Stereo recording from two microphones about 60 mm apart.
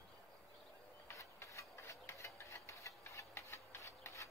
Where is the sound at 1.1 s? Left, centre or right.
Left.